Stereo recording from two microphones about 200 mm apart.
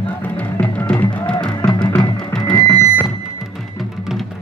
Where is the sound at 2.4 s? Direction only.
15° left (ahead or behind).